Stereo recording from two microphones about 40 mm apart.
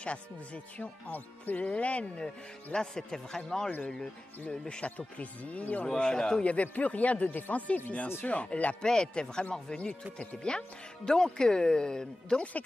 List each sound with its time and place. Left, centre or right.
0.7 s speech: left
1.7 s speech: left
4.8 s speech: left
5.9 s speech: centre
6.4 s speech: left
8.8 s speech: centre